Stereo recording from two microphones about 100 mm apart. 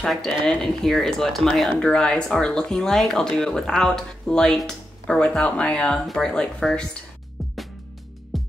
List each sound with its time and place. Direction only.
0.0 s speech: 5° left (ahead or behind)
8.3 s music: centre (ahead or behind)